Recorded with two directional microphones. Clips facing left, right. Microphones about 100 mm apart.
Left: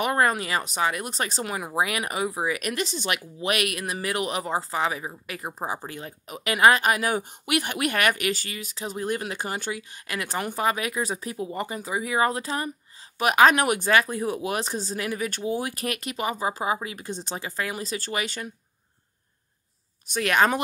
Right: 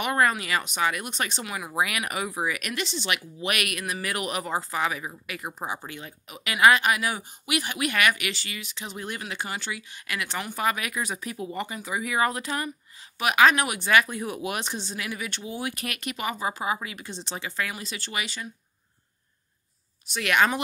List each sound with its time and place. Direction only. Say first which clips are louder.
0.0 s speech: left 1 dB; 30° left (ahead or behind)
1.8 s speech: left 2 dB; 30° left (ahead or behind)
2.7 s speech: left 2 dB; 40° left (ahead or behind)
3.3 s speech: left 3 dB; 30° left (ahead or behind)
10.5 s speech: left 1 dB; 30° left (ahead or behind); by 13.9 s 45° left (ahead or behind)
13.9 s speech: right 4 dB; 30° left (ahead or behind)
16.9 s speech: left 3 dB; 40° left (ahead or behind)
17.6 s speech: left 4 dB; 35° left (ahead or behind); by 18.5 s 50° left (ahead or behind)
20.1 s speech: left 2 dB; 35° left (ahead or behind)